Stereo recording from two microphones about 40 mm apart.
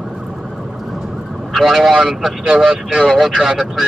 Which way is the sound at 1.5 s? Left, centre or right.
Centre.